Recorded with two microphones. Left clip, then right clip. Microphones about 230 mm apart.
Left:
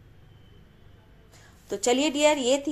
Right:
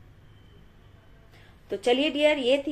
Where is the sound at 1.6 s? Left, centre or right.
Left.